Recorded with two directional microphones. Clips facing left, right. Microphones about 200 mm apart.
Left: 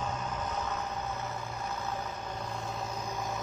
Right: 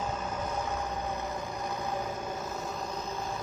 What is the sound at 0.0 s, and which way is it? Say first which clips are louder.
Vehicle: right 2 dB; 10° right (ahead or behind).